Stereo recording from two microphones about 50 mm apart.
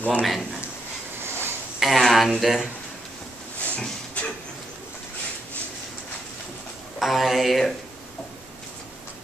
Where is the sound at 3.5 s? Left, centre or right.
Left.